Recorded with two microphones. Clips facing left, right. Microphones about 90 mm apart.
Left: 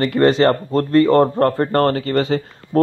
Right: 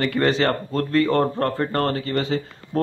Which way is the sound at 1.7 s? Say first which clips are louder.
Left 6 dB; 50° left (ahead or behind).